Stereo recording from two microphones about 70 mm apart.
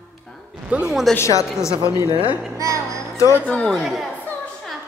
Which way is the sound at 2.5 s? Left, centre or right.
Right.